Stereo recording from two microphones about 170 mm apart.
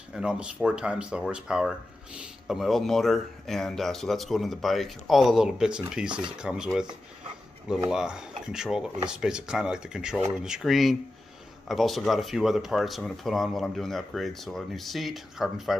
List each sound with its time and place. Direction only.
0.1 s speech: 5° right (ahead or behind)
7.9 s speech: 5° right (ahead or behind)